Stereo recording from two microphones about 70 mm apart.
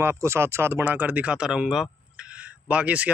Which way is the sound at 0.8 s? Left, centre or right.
Right.